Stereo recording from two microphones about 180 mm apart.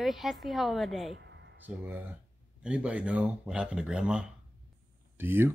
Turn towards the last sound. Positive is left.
turn(degrees=-10)  # may be behind; listen again after turning